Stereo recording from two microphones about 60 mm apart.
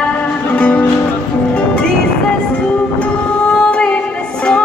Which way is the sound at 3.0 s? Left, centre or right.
Centre.